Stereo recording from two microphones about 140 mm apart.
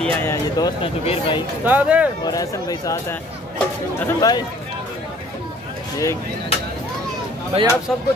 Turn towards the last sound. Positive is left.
turn(degrees=-50)  # may be behind; listen again after turning